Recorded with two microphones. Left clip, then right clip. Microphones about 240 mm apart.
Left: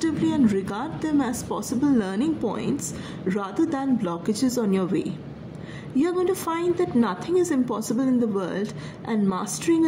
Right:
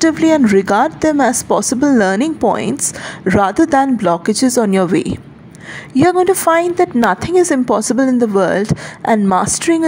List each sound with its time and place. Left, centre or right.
0.0 s a woman's voice: right